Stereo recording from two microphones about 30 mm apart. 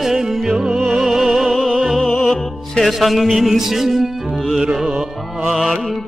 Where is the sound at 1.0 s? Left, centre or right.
Centre.